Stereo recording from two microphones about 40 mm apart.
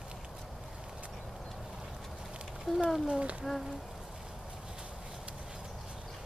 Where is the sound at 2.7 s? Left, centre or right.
Centre.